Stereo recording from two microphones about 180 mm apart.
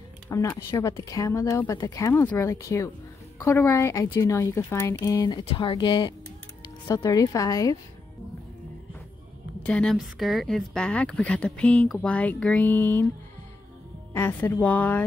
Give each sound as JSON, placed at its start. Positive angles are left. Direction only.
{"t": 0.3, "sound": "a woman's voice", "side_deg": 15}
{"t": 9.7, "sound": "speech", "side_deg": 5}
{"t": 14.1, "sound": "speech", "side_deg": 10}